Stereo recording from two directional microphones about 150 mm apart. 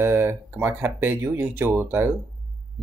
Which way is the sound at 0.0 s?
15° right (ahead or behind).